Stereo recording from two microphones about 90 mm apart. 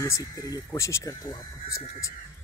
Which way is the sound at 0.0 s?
40° left (ahead or behind).